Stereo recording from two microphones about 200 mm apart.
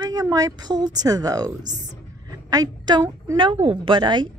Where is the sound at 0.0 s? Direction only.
20° right (ahead or behind).